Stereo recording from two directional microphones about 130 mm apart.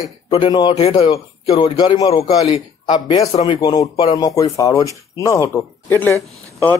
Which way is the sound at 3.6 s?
30° left (ahead or behind).